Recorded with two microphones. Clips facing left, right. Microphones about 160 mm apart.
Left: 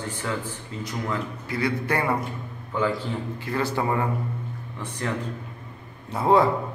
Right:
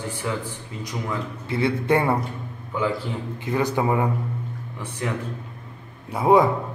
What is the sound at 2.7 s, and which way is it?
A man's voice, 10° right (ahead or behind).